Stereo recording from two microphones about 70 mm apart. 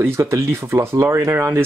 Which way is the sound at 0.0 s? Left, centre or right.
Right.